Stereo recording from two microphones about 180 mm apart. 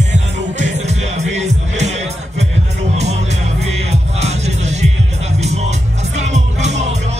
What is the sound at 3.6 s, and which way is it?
Music, 35° right (ahead or behind).